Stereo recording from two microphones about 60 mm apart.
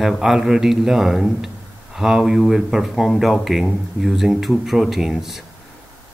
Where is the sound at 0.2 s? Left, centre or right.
Centre.